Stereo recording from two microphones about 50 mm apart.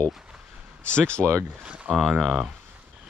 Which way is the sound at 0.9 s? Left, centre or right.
Left.